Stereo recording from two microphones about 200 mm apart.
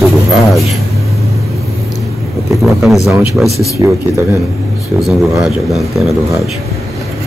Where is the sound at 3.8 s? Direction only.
15° right (ahead or behind).